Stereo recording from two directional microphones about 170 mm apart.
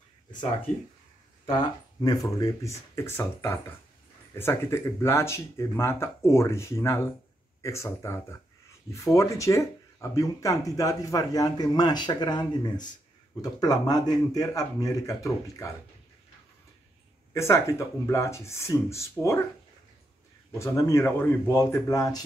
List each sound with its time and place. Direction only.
0.7 s speech: 50° left (ahead or behind)
1.4 s speech: 30° left (ahead or behind)
17.3 s speech: 15° left (ahead or behind)
20.5 s speech: 15° left (ahead or behind)